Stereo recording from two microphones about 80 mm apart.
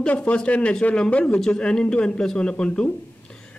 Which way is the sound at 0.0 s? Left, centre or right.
Centre.